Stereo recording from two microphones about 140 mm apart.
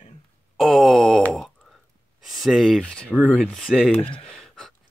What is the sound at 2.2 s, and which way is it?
Speech, centre (ahead or behind).